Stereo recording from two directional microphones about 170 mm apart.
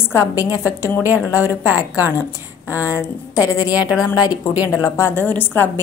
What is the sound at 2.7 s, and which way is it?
A woman's voice, 15° left (ahead or behind).